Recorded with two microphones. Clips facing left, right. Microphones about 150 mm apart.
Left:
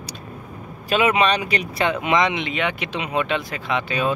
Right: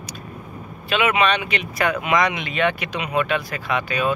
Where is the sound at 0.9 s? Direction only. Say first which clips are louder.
Left 1 dB; 35° left (ahead or behind).